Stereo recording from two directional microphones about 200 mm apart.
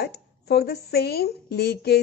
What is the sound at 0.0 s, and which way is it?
Speech, 55° left (ahead or behind).